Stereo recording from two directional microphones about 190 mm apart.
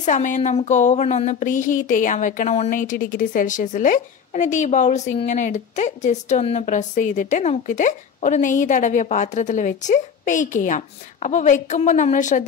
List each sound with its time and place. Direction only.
0.0 s a woman's voice: 40° left (ahead or behind)